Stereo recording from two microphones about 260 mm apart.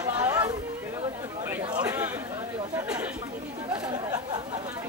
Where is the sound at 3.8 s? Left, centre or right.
Centre.